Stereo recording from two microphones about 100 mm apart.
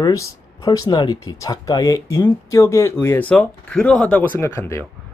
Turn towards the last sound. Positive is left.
turn(degrees=25)  # may be behind; listen again after turning